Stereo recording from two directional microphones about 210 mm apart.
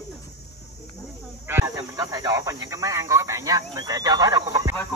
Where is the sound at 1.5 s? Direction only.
15° right (ahead or behind).